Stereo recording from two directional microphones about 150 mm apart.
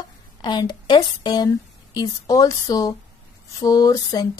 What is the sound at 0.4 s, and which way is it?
A woman's voice, 30° left (ahead or behind).